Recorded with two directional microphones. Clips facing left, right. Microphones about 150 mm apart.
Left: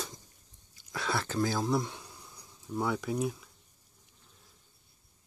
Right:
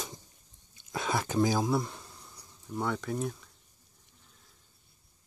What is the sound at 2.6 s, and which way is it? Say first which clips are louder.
Speech: left 1 dB; 5° left (ahead or behind).